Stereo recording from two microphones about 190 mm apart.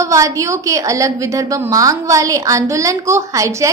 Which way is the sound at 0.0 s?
15° right (ahead or behind).